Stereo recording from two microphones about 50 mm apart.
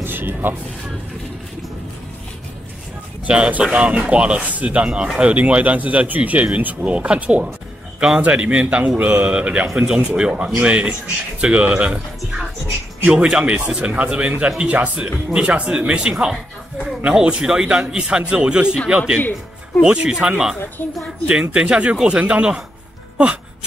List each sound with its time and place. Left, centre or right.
0.0 s vehicle: right
3.3 s a man's voice: right
19.1 s speech: left
19.8 s speech: centre
20.8 s speech: left
21.3 s a man's voice: right